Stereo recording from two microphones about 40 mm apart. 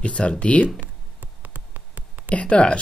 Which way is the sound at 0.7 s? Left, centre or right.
Right.